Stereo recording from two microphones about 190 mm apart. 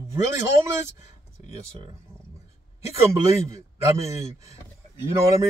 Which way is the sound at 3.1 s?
15° right (ahead or behind).